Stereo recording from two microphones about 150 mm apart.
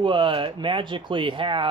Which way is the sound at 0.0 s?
35° right (ahead or behind).